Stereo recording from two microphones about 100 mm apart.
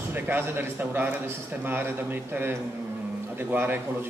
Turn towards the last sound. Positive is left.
turn(degrees=-20)  # may be behind; listen again after turning